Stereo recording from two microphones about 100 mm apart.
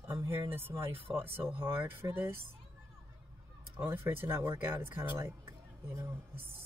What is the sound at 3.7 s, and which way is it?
Speech, 20° right (ahead or behind).